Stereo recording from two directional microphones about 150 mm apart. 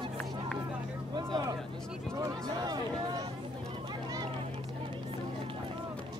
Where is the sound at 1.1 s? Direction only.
25° right (ahead or behind).